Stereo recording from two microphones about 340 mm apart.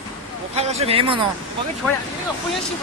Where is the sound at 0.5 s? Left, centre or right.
Centre.